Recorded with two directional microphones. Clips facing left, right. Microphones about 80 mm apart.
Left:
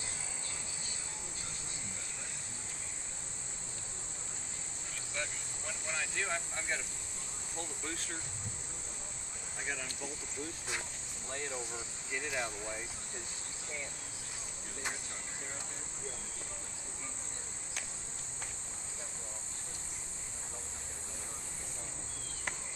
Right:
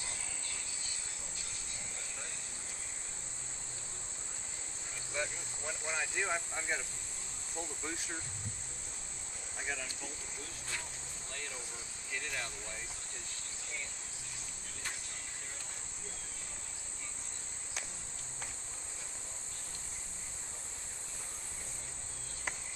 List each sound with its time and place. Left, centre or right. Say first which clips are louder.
5.1 s speech: right 3 dB; centre
7.5 s insect: right 1 dB; centre
9.6 s speech: left 1 dB; centre
11.2 s speech: left 7 dB; left